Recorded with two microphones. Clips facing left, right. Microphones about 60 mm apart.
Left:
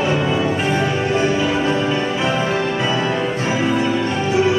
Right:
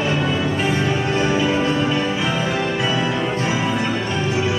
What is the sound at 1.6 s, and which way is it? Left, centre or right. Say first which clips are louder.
Music: left 1 dB; left.